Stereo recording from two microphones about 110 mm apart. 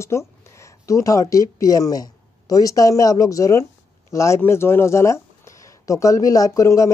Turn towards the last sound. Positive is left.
turn(degrees=30)  # may be behind; listen again after turning